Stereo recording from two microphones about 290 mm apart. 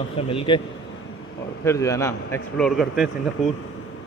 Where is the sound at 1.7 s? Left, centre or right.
Centre.